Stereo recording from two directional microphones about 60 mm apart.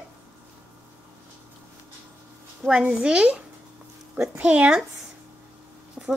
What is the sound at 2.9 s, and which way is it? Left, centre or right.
Speech, centre.